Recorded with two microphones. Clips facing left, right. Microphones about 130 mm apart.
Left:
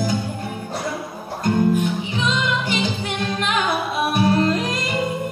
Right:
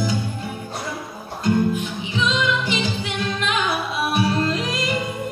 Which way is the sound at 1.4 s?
50° left (ahead or behind).